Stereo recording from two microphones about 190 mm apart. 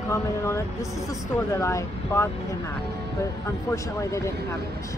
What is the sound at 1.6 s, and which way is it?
Speech, 15° left (ahead or behind).